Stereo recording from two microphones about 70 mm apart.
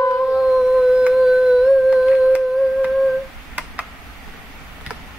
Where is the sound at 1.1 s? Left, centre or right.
Centre.